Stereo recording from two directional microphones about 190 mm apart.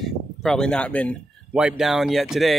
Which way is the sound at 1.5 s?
5° right (ahead or behind).